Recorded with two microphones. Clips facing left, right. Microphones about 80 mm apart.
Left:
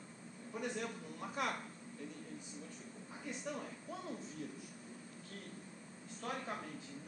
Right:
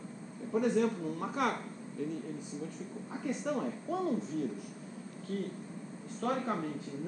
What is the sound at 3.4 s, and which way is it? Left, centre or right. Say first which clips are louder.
Speech: right 10 dB; right.